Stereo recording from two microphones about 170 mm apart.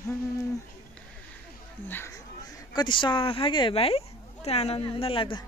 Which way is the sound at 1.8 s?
15° left (ahead or behind).